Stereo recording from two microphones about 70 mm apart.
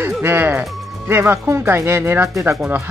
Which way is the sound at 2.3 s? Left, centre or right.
Right.